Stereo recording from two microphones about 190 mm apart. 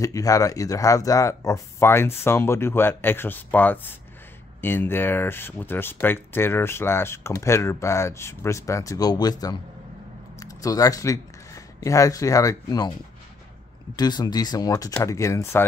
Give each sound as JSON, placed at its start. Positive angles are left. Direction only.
{"t": 0.0, "sound": "speech", "side_deg": 15}
{"t": 13.9, "sound": "speech", "side_deg": 20}